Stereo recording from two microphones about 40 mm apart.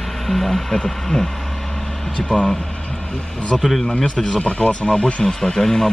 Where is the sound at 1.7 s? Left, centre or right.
Centre.